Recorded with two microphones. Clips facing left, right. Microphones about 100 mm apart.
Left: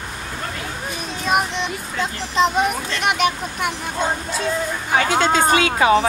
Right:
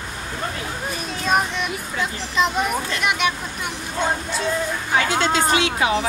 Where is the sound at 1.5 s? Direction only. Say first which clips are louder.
Left 1 dB; 25° left (ahead or behind).